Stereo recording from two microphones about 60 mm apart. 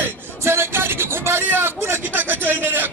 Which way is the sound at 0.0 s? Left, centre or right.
Right.